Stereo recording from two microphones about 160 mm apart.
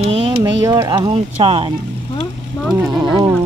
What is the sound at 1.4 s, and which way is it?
Speech, 35° right (ahead or behind).